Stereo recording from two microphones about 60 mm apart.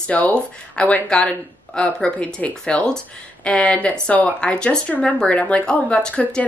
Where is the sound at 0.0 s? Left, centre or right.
Left.